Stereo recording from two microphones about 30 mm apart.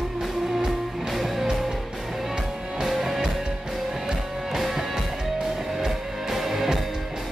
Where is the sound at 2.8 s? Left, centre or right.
Centre.